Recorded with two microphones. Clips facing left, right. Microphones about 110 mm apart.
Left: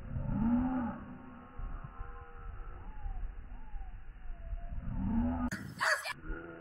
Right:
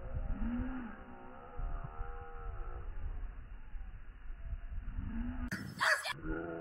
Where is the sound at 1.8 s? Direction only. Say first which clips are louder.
Right 2 dB; 15° right (ahead or behind).